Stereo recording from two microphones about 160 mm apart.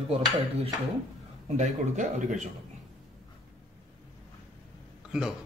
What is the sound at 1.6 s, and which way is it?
Speech, 50° right (ahead or behind).